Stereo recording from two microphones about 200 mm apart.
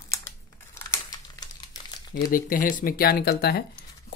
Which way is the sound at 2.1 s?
45° left (ahead or behind).